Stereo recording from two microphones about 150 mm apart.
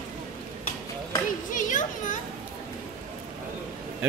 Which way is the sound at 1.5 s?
60° left (ahead or behind).